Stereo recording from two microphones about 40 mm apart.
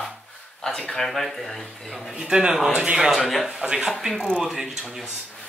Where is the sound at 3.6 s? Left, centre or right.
Centre.